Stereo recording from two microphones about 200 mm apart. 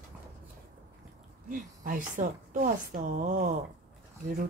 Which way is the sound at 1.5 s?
40° right (ahead or behind).